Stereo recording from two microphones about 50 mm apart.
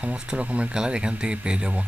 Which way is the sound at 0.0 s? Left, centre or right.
Right.